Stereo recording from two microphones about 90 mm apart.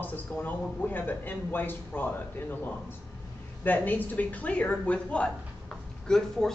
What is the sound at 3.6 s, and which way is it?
Speech, 20° left (ahead or behind).